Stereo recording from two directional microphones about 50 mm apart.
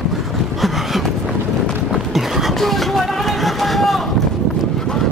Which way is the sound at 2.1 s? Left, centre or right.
Centre.